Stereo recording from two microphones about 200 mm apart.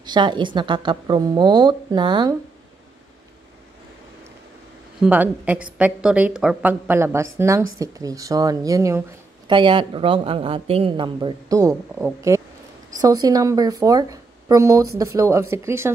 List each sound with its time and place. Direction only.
0.0 s a woman's voice: 20° right (ahead or behind)
5.0 s a woman's voice: 10° right (ahead or behind)